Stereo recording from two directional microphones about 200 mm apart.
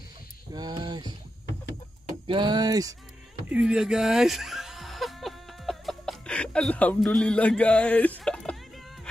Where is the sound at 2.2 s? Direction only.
25° right (ahead or behind).